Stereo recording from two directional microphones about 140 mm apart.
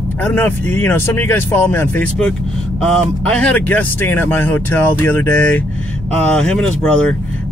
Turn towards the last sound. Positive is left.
turn(degrees=5)  # may be behind; listen again after turning